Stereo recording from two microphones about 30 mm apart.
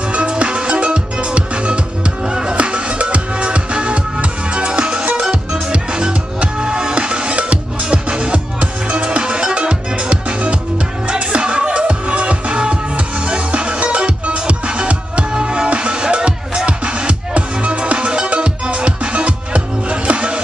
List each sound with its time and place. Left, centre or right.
0.1 s music: right
2.2 s music: right
2.5 s music: right